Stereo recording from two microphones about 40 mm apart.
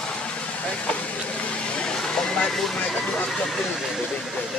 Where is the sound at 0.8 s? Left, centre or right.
Left.